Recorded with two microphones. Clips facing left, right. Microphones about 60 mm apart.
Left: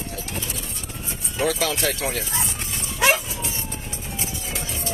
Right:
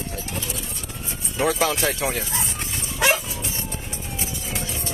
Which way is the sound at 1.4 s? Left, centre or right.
Right.